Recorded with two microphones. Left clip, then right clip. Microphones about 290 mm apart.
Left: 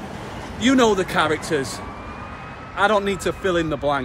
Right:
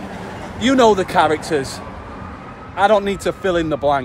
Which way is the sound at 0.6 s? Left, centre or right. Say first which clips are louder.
Right 4 dB; centre.